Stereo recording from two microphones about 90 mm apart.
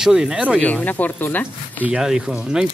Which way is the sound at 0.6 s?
15° left (ahead or behind).